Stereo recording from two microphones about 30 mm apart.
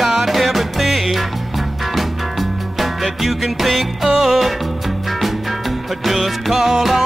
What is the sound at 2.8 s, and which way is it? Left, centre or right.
Music, centre.